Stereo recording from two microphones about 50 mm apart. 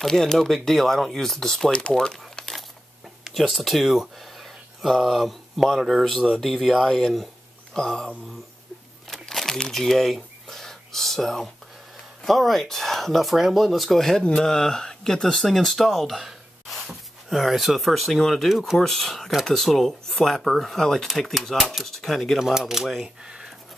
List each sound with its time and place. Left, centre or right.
0.0 s speech: centre
2.0 s crumpling: centre
3.3 s speech: centre
9.1 s crumpling: centre
9.7 s speech: centre
22.4 s speech: centre
23.0 s speech: centre